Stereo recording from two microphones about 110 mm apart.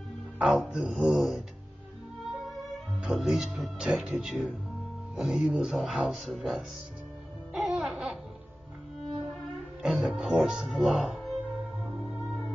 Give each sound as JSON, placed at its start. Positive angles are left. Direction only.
{"t": 0.4, "sound": "speech", "side_deg": -10}
{"t": 3.0, "sound": "speech", "side_deg": -5}
{"t": 7.5, "sound": "music", "side_deg": 0}
{"t": 9.8, "sound": "speech", "side_deg": -5}